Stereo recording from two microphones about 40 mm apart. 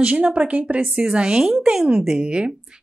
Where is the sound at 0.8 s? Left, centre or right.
Centre.